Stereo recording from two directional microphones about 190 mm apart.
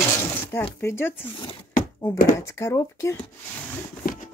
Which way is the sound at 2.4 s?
15° left (ahead or behind).